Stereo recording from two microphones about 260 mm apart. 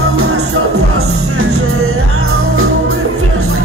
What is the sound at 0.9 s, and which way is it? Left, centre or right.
Music, right.